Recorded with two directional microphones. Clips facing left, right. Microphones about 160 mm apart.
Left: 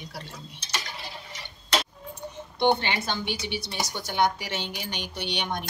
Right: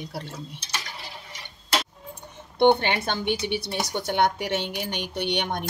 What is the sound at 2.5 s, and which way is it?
A woman's voice, 55° right (ahead or behind).